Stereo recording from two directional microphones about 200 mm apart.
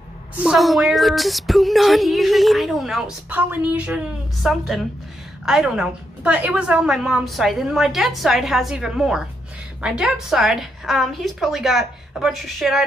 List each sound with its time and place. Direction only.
0.4 s speech: centre (ahead or behind)